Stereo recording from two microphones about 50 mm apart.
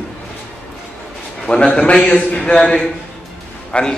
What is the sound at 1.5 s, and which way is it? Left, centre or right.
A man's voice, left.